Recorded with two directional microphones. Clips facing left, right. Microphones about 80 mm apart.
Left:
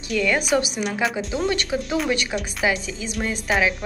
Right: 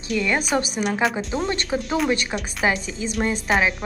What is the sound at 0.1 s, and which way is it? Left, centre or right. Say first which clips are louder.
Speech: left 1 dB; centre.